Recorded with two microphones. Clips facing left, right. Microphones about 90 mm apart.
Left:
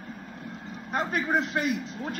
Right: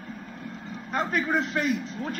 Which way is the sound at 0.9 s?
15° left (ahead or behind).